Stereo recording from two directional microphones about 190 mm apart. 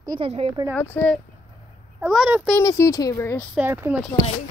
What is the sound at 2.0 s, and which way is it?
Speech, 5° right (ahead or behind).